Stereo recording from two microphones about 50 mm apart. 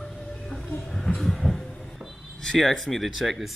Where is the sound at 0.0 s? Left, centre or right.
Centre.